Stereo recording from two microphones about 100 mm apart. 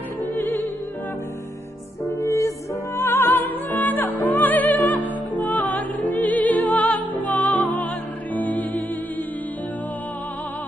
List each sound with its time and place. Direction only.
0.4 s music: 20° left (ahead or behind)
2.1 s music: 35° left (ahead or behind)
3.0 s music: 20° left (ahead or behind)